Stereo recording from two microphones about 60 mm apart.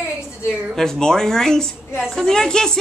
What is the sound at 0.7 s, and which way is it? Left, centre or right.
Speech, centre.